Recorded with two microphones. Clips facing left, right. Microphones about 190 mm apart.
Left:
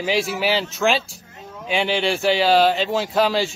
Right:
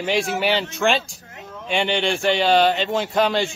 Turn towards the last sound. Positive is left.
turn(degrees=0)  # may be behind; listen again after turning